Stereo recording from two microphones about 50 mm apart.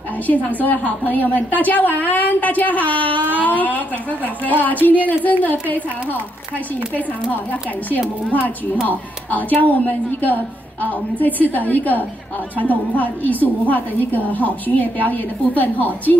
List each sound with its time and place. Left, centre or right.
0.3 s a woman's voice: left
8.8 s a woman's voice: left